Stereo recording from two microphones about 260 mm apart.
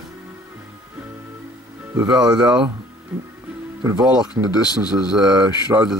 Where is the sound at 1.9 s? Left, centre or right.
Centre.